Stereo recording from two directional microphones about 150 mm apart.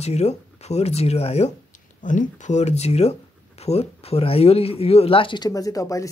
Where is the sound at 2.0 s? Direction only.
55° left (ahead or behind).